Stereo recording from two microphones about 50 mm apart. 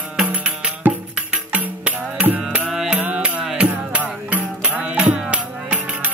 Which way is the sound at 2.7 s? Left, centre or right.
Centre.